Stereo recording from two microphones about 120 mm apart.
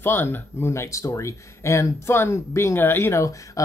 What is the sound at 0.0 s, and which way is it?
Speech, 20° left (ahead or behind).